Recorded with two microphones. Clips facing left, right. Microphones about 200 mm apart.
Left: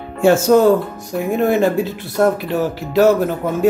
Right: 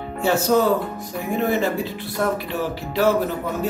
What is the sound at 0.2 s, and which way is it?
Speech, 50° left (ahead or behind).